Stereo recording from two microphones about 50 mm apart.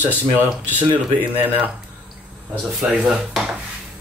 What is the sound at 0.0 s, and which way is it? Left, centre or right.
Speech, right.